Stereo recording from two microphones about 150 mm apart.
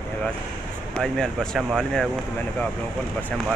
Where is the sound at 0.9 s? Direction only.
5° left (ahead or behind).